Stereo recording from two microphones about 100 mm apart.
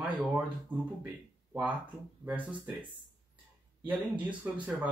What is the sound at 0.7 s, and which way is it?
Speech, 15° right (ahead or behind).